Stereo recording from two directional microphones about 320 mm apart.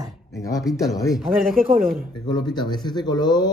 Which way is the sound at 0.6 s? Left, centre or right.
Centre.